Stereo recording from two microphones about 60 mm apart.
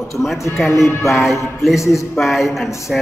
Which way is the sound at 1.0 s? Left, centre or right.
Centre.